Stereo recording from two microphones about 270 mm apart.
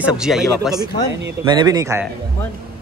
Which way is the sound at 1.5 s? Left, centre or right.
Centre.